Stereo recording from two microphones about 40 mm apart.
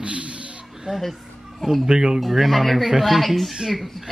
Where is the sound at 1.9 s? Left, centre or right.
Centre.